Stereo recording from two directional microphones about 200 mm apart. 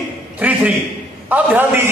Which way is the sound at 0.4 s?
10° right (ahead or behind).